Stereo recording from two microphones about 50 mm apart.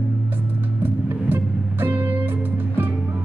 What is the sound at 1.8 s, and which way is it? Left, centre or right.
Music, right.